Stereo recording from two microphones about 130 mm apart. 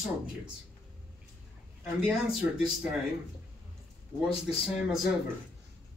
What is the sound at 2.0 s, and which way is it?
Speech, 5° right (ahead or behind).